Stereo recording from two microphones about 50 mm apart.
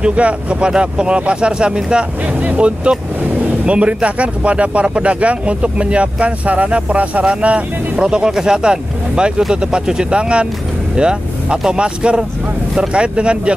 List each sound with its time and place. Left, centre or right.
0.0 s speech: right